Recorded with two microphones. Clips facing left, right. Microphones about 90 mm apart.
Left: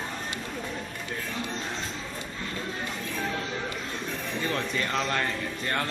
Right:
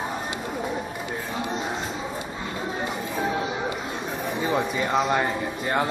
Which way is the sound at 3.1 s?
20° right (ahead or behind).